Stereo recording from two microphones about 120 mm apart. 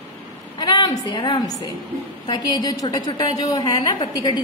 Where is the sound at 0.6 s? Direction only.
35° left (ahead or behind).